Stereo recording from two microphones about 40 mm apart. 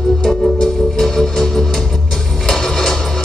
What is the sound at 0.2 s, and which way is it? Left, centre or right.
Music, centre.